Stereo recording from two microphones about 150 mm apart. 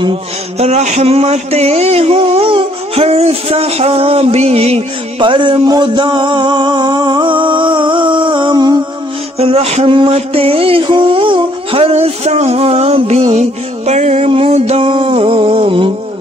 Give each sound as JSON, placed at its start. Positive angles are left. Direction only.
{"t": 0.0, "sound": "speech", "side_deg": -40}
{"t": 9.4, "sound": "speech", "side_deg": -40}